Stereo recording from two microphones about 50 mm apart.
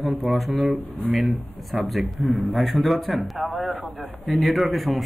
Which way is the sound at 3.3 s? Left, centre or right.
Right.